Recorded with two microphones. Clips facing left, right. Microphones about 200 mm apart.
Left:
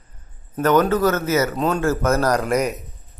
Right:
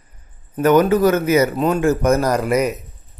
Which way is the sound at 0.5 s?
10° right (ahead or behind).